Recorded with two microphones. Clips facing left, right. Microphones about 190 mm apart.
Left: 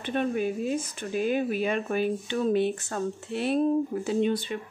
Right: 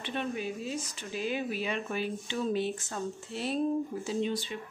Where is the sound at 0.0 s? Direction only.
50° left (ahead or behind).